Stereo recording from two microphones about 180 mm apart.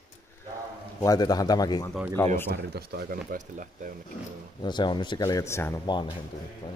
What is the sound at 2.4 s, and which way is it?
Speech, 65° right (ahead or behind).